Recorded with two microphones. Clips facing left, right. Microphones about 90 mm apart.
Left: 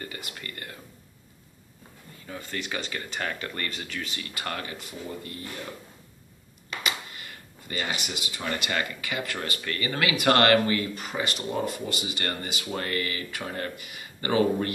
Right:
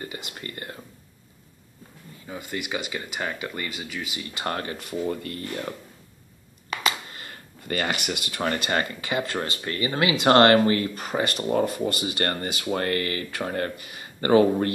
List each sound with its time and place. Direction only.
0.0 s speech: 20° right (ahead or behind)
2.2 s speech: 15° right (ahead or behind)
4.3 s speech: 20° right (ahead or behind)
4.7 s speech: 55° right (ahead or behind)
7.1 s a sound: 35° right (ahead or behind)
7.6 s speech: 55° right (ahead or behind)
8.5 s speech: 35° right (ahead or behind)